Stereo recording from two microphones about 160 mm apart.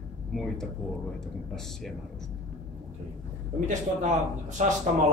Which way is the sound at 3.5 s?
50° right (ahead or behind).